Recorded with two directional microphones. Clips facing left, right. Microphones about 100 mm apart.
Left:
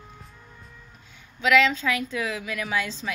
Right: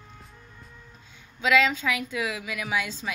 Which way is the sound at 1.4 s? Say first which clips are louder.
Left 2 dB; 15° right (ahead or behind).